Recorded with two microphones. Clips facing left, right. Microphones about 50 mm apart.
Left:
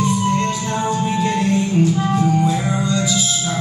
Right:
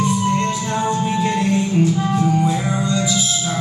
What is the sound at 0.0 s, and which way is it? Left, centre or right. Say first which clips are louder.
Music: even; centre.